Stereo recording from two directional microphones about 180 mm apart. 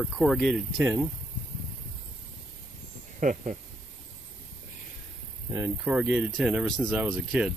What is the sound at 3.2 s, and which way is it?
Speech, 45° right (ahead or behind).